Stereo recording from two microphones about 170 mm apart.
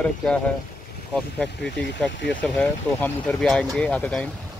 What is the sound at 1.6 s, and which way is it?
Speech, 90° left.